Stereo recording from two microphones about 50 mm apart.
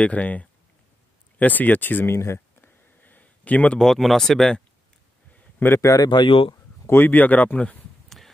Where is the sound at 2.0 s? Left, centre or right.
Left.